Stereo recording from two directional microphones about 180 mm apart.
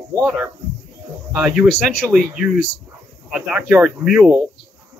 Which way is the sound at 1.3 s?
5° right (ahead or behind).